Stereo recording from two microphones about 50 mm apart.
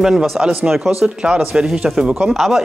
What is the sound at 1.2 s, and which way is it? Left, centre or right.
Speech, centre.